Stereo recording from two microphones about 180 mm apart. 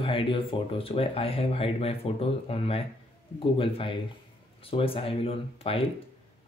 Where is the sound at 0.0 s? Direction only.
30° left (ahead or behind).